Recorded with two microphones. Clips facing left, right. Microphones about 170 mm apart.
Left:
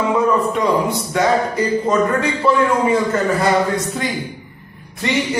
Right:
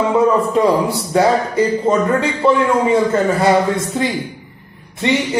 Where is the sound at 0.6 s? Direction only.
35° right (ahead or behind).